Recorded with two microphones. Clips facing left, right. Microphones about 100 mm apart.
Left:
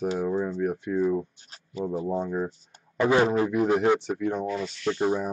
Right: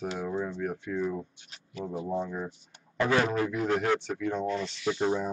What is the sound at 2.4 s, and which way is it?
Speech, 40° left (ahead or behind).